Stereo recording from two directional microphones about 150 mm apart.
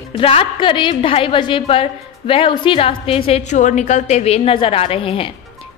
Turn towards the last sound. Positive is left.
turn(degrees=35)  # may be behind; listen again after turning